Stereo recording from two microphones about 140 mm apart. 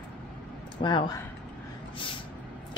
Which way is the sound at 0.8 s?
35° left (ahead or behind).